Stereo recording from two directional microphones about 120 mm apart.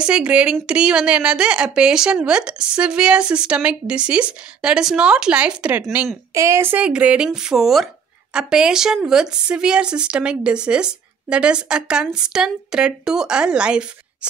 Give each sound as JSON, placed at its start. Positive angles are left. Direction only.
{"t": 0.0, "sound": "a woman's voice", "side_deg": -10}
{"t": 6.3, "sound": "speech", "side_deg": -25}